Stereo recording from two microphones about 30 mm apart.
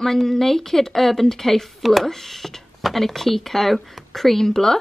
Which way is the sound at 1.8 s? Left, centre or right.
Centre.